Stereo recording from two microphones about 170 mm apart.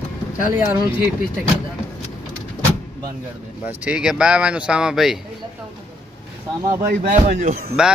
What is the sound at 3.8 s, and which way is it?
Speech, 5° right (ahead or behind).